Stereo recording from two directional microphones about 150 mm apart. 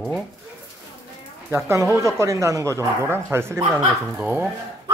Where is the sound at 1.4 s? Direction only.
20° right (ahead or behind).